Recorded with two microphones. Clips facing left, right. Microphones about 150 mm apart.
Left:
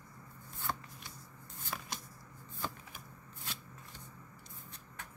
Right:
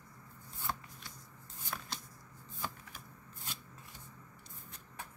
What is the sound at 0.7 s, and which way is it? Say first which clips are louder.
Shuffling cards: left 1 dB; centre (ahead or behind).